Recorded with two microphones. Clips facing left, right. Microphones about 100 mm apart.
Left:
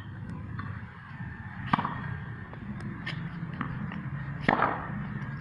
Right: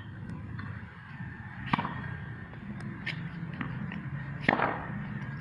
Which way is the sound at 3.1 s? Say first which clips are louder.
Left 2 dB; 35° left (ahead or behind).